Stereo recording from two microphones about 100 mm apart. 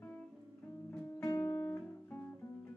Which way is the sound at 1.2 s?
25° left (ahead or behind).